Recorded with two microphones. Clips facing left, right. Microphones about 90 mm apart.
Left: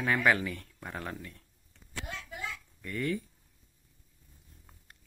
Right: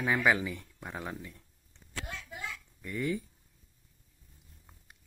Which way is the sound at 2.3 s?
10° right (ahead or behind).